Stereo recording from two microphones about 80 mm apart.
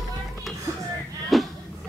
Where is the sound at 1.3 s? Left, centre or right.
Centre.